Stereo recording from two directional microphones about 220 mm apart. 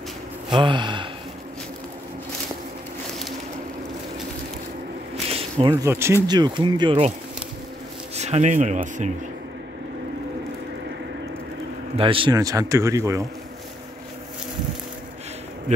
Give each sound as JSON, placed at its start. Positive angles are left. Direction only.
{"t": 0.5, "sound": "speech", "side_deg": -20}
{"t": 5.3, "sound": "speech", "side_deg": -25}
{"t": 8.2, "sound": "speech", "side_deg": -30}
{"t": 12.0, "sound": "a man's voice", "side_deg": -25}